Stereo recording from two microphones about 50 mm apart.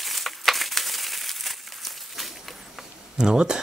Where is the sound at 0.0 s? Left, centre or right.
Centre.